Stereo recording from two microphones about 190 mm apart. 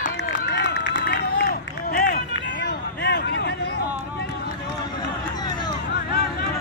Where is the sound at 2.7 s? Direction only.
60° left (ahead or behind).